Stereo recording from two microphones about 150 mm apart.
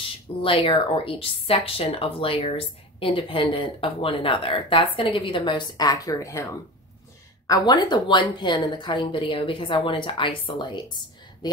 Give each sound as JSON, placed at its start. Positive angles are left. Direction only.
{"t": 0.4, "sound": "speech", "side_deg": 35}
{"t": 7.4, "sound": "speech", "side_deg": 25}